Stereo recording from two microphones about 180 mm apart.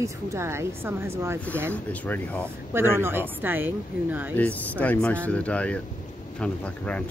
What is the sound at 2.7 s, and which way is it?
Speech, 15° right (ahead or behind).